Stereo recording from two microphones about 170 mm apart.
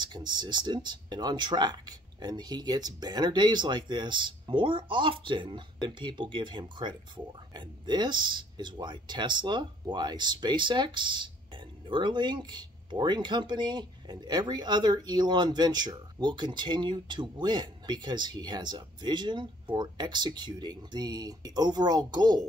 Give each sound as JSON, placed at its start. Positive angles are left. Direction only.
{"t": 0.0, "sound": "speech", "side_deg": -25}